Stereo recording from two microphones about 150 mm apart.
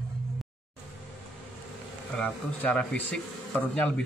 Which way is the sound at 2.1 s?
5° left (ahead or behind).